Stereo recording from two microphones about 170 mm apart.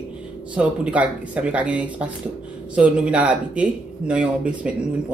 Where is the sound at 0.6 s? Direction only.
5° right (ahead or behind).